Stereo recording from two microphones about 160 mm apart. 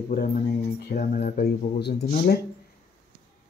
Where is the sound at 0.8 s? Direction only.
60° left (ahead or behind).